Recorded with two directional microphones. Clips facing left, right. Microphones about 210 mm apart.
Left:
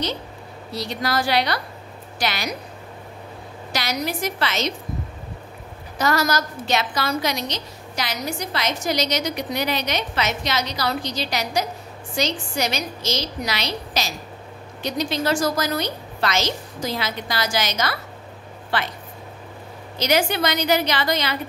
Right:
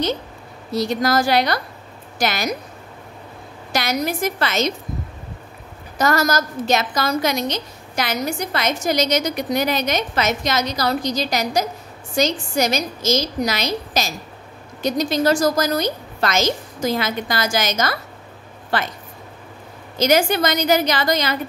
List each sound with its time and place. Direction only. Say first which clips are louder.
0.7 s a woman's voice: right 7 dB; 45° right (ahead or behind)
3.7 s a woman's voice: right 4 dB; 50° right (ahead or behind)
5.9 s a woman's voice: right 3 dB; 45° right (ahead or behind)
20.0 s a woman's voice: right 4 dB; 45° right (ahead or behind)